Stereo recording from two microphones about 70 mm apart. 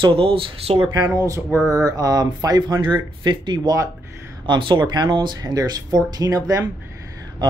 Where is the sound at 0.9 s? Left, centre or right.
Right.